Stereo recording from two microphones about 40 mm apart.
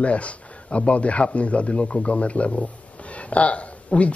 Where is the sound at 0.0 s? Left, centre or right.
Left.